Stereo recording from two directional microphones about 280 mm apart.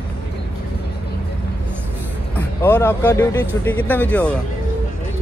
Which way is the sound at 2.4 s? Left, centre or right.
Centre.